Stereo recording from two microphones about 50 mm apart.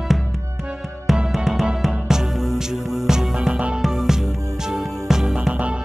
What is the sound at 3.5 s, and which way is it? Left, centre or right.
Music, right.